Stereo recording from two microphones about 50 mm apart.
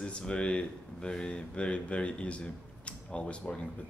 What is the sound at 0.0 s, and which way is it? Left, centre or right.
Speech, centre.